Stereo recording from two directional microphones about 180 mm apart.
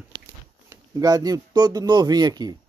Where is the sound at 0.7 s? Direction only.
20° right (ahead or behind).